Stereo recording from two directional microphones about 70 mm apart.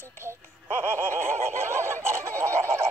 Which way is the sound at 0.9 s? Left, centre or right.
Right.